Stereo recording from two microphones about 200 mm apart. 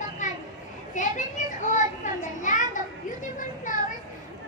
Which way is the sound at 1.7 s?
40° left (ahead or behind).